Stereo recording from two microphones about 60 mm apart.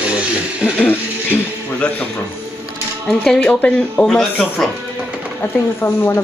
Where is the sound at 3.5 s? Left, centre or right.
Left.